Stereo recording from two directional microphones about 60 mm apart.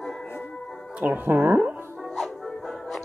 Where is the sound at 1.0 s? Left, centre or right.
Right.